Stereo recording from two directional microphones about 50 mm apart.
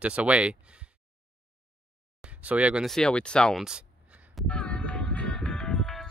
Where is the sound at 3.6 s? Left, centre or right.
Centre.